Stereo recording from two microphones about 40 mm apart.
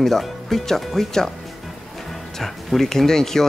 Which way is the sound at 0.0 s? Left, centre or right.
Centre.